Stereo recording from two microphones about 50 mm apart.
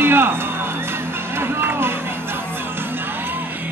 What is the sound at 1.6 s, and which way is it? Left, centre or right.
Run, right.